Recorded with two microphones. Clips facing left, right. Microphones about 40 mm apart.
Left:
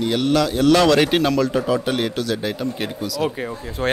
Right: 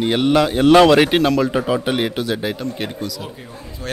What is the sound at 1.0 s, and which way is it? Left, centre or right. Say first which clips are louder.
Speech: right 2 dB; centre.